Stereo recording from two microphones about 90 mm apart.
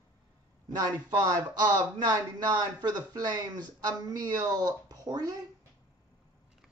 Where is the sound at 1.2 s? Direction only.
45° right (ahead or behind).